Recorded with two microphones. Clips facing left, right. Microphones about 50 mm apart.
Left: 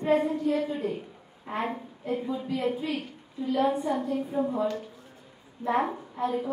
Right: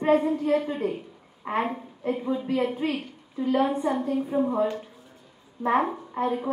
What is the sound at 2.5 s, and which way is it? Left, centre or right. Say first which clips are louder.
Speech: right 2 dB; right.